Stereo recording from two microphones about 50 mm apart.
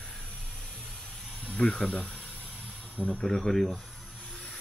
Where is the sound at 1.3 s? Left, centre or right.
Left.